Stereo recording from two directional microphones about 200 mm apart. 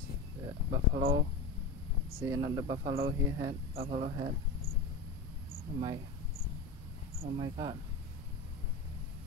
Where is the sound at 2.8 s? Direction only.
50° right (ahead or behind).